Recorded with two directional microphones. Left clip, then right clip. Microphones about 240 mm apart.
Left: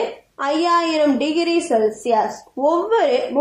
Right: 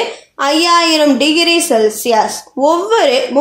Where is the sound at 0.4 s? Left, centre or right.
Right.